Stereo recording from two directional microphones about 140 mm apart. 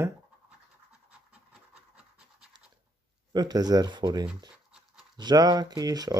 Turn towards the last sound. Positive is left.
turn(degrees=-25)  # may be behind; listen again after turning